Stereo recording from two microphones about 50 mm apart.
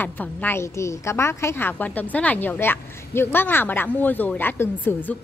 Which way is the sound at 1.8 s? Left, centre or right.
Left.